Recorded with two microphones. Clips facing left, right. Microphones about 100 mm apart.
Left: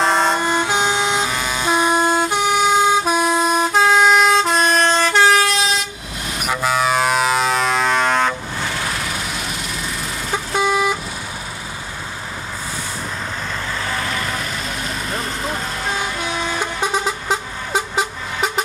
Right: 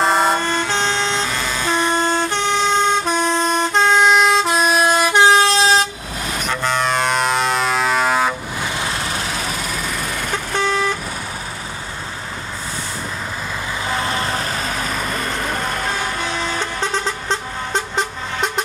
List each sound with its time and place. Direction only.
0.0 s vehicle: 5° right (ahead or behind)
0.4 s vehicle: 15° left (ahead or behind); by 5.8 s 30° right (ahead or behind)
6.4 s a sound: 10° left (ahead or behind); by 9.8 s 40° right (ahead or behind)
10.3 s vehicle: 10° left (ahead or behind)
13.8 s vehicle: 25° right (ahead or behind); by 15.0 s 45° right (ahead or behind)
15.2 s vehicle: 60° right (ahead or behind)
16.3 s vehicle: 15° left (ahead or behind)